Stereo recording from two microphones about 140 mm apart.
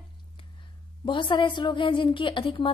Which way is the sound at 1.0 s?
35° left (ahead or behind).